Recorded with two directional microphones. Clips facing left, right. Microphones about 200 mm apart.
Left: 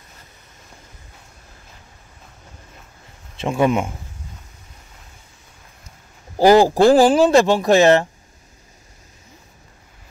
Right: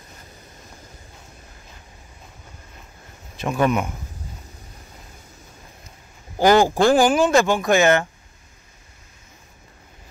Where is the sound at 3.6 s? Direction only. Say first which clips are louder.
Left 2 dB; 25° left (ahead or behind).